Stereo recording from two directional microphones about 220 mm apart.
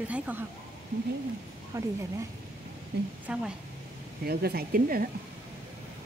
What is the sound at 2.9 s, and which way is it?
Speech, 50° right (ahead or behind).